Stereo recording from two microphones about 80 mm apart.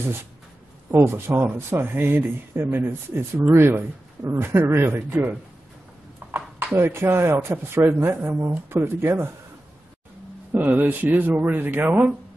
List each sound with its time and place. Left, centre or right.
0.9 s speech: right
6.3 s speech: right
10.5 s speech: right